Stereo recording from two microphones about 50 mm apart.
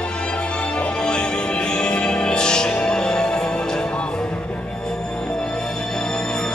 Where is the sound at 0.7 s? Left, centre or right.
Centre.